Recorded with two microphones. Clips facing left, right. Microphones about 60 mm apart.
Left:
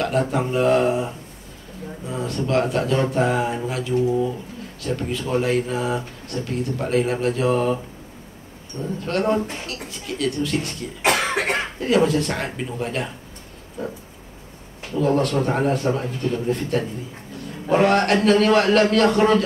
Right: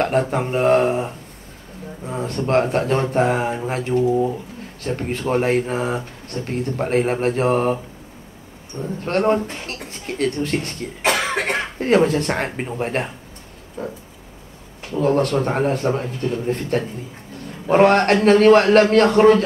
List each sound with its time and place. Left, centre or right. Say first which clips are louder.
0.0 s speech: right 2 dB; right
9.0 s speech: right 3 dB; right
11.0 s cough: even; centre
11.8 s speech: right 3 dB; right